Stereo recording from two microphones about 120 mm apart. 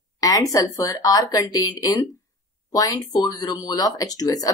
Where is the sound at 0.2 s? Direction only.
30° left (ahead or behind).